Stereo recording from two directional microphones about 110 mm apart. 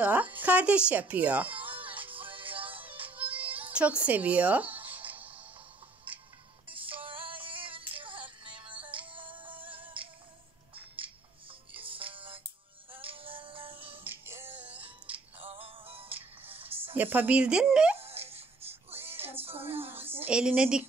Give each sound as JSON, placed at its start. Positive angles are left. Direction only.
{"t": 0.0, "sound": "speech", "side_deg": -15}
{"t": 1.5, "sound": "music", "side_deg": -55}
{"t": 3.2, "sound": "music", "side_deg": -15}
{"t": 6.7, "sound": "music", "side_deg": -50}
{"t": 9.6, "sound": "music", "side_deg": -15}
{"t": 11.7, "sound": "music", "side_deg": -55}
{"t": 14.0, "sound": "music", "side_deg": -20}
{"t": 15.4, "sound": "music", "side_deg": -55}
{"t": 16.9, "sound": "speech", "side_deg": -15}
{"t": 17.9, "sound": "music", "side_deg": -65}
{"t": 19.4, "sound": "a sound", "side_deg": -60}
{"t": 20.2, "sound": "speech", "side_deg": -10}